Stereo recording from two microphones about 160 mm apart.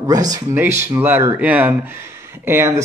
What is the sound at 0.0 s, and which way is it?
Speech, 20° right (ahead or behind).